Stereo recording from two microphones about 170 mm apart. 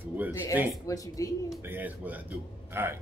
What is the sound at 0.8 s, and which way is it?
Speech, 20° left (ahead or behind).